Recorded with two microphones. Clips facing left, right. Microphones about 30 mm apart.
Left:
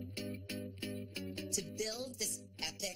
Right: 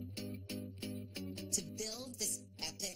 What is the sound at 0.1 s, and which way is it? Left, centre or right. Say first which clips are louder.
Music: left 2 dB; left.